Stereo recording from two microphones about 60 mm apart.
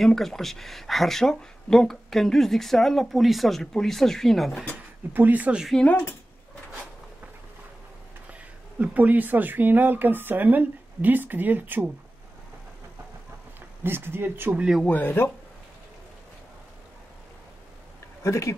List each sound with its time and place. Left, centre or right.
0.0 s speech: centre
5.1 s speech: right
5.8 s speech: centre
8.3 s speech: right
13.6 s speech: right
14.9 s speech: left
18.2 s speech: left